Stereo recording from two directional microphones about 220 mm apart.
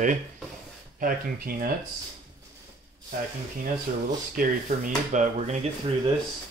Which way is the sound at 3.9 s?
40° right (ahead or behind).